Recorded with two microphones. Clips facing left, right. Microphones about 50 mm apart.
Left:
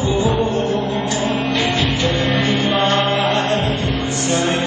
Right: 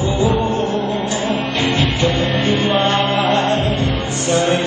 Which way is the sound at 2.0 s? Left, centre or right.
Right.